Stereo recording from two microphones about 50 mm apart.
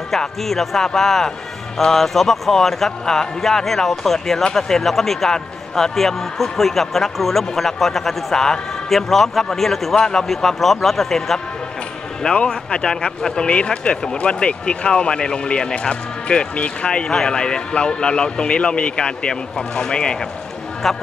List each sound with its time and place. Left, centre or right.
0.4 s a man's voice: centre
20.8 s a man's voice: centre